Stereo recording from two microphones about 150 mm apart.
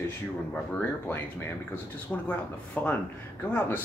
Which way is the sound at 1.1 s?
15° left (ahead or behind).